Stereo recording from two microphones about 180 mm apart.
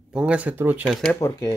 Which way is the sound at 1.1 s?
20° left (ahead or behind).